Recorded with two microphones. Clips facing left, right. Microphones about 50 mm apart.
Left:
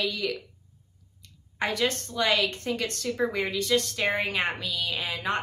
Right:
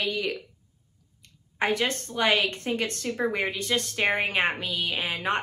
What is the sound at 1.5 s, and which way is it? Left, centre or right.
A woman's voice, right.